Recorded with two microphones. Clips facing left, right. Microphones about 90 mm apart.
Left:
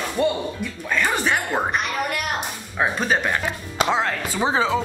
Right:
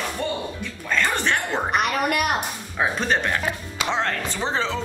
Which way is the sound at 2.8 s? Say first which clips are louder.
Left 1 dB; 5° left (ahead or behind).